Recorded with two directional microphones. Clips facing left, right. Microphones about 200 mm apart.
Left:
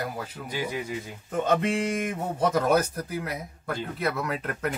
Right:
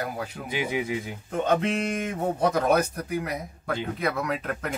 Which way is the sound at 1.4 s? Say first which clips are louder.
Even; 10° left (ahead or behind).